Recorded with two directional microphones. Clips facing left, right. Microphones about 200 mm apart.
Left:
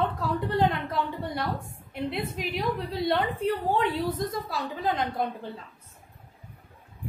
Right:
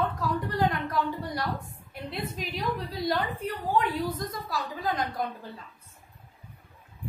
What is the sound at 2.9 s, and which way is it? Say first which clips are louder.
A woman's voice: left 3 dB; 25° left (ahead or behind).